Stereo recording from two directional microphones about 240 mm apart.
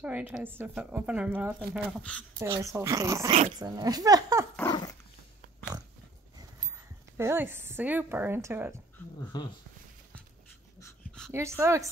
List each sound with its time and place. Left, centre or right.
0.0 s speech: centre
2.4 s a woman's voice: centre
4.6 s dog: centre
7.2 s a woman's voice: centre
9.3 s speech: centre
10.8 s dog: centre
11.3 s a woman's voice: centre